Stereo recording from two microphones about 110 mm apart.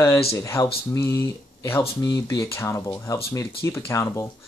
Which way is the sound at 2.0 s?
40° left (ahead or behind).